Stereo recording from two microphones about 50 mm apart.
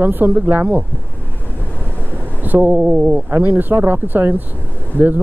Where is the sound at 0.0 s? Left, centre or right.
Right.